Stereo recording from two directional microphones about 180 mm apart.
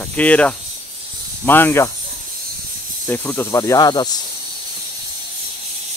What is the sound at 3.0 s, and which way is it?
Speech, 15° left (ahead or behind).